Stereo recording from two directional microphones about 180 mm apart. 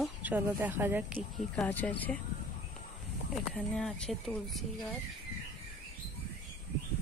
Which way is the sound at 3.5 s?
5° left (ahead or behind).